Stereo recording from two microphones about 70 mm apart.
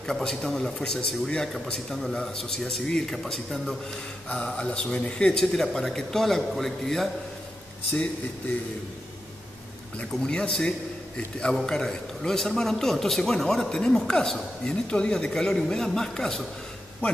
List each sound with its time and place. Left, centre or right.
0.0 s a man's voice: centre
9.9 s a man's voice: centre